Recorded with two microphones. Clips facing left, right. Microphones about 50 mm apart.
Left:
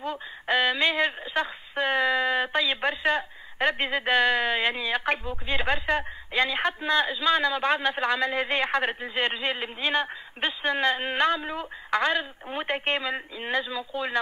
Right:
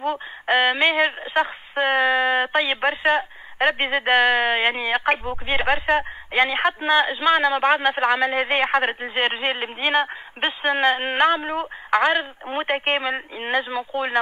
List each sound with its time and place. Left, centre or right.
0.5 s speech: right